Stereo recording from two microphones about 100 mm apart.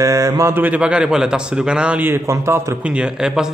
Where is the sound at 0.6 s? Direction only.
15° right (ahead or behind).